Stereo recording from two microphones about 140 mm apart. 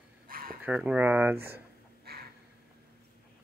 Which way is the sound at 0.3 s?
90° right.